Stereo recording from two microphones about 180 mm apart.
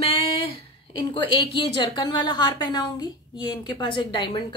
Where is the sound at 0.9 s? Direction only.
30° left (ahead or behind).